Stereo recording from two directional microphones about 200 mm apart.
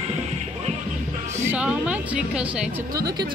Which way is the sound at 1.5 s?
5° right (ahead or behind).